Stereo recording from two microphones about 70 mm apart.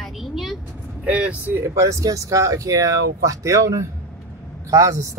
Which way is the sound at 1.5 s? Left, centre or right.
Right.